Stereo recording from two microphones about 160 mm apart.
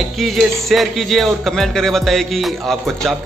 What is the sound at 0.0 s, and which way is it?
Speech, centre (ahead or behind).